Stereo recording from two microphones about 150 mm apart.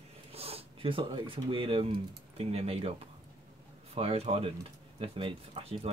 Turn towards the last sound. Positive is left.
turn(degrees=-40)  # may be behind; listen again after turning